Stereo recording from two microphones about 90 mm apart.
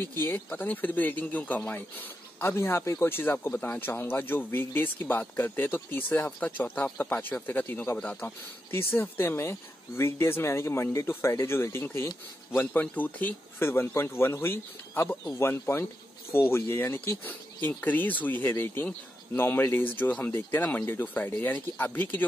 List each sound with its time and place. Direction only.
0.0 s speech: 25° left (ahead or behind)